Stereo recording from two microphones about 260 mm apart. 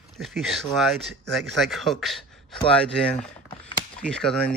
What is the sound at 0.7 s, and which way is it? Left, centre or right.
Speech, centre.